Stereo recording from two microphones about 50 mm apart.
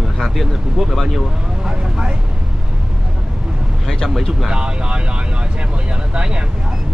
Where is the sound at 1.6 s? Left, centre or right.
Centre.